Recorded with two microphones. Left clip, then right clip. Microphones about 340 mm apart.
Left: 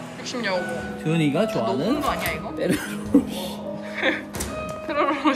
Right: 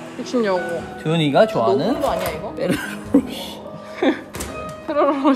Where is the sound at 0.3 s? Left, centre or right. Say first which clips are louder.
Right 6 dB; centre.